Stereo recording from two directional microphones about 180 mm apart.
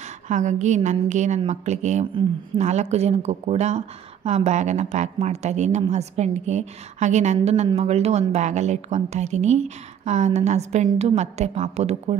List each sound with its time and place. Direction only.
0.3 s speech: 45° right (ahead or behind)